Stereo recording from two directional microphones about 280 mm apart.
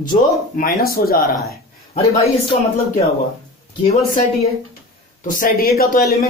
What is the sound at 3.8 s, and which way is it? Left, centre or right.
A man's voice, left.